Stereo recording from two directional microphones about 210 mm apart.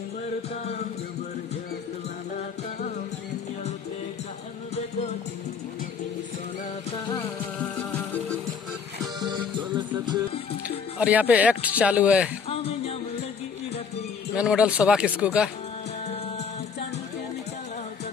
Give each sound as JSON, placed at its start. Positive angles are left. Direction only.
{"t": 4.7, "sound": "music", "side_deg": 30}
{"t": 9.0, "sound": "music", "side_deg": -20}
{"t": 11.0, "sound": "speech", "side_deg": -5}
{"t": 12.4, "sound": "music", "side_deg": 30}
{"t": 14.3, "sound": "speech", "side_deg": -5}